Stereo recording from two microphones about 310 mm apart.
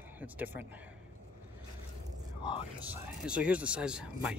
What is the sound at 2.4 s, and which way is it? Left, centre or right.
Speech, centre.